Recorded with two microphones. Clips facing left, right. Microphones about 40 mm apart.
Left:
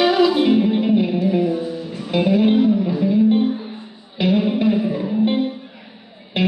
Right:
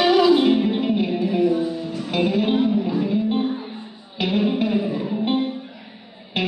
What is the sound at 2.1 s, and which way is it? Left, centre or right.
Music, centre.